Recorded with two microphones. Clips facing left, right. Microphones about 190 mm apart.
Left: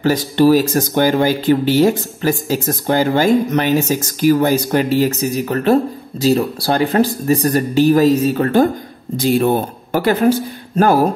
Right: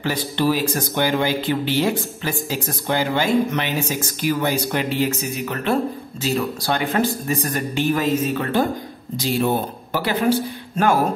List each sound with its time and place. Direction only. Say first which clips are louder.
0.0 s speech: left 8 dB; 40° left (ahead or behind)